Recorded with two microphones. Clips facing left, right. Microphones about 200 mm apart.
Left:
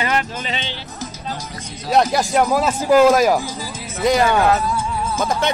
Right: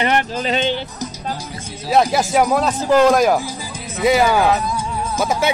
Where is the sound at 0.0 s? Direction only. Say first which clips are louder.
Right 3 dB; 35° right (ahead or behind).